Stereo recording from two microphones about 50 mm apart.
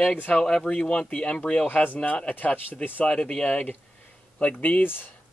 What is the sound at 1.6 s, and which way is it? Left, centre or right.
Speech, left.